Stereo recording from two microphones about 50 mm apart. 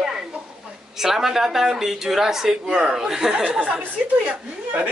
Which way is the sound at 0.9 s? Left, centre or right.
Centre.